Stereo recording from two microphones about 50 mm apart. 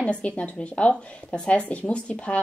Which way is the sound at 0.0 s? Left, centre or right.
Left.